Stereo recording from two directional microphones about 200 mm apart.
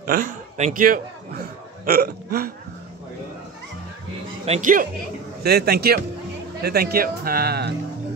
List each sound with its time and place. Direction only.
0.0 s a man's voice: 45° right (ahead or behind)
4.5 s speech: 40° right (ahead or behind)
5.4 s speech: 50° right (ahead or behind)